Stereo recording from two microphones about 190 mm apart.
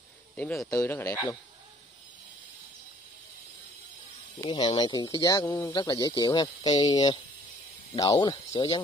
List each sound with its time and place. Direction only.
0.7 s speech: 15° left (ahead or behind)
4.5 s speech: 25° left (ahead or behind)